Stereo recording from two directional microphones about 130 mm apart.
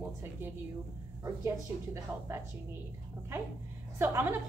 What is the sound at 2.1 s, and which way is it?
Speech, 15° right (ahead or behind).